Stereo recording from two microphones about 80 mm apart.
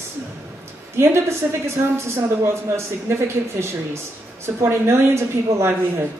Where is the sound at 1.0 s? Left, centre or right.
Right.